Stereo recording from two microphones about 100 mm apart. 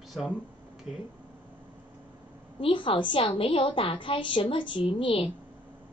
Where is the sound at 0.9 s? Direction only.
5° right (ahead or behind).